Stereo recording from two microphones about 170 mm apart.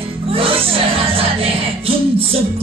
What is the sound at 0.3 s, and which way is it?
Music, 35° right (ahead or behind).